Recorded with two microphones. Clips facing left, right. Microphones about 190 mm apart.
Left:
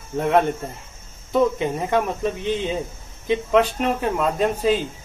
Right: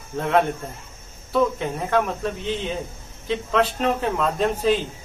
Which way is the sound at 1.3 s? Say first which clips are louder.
Left 2 dB; 15° left (ahead or behind).